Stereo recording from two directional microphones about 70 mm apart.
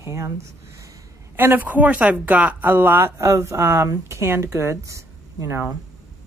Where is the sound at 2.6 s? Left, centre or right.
Right.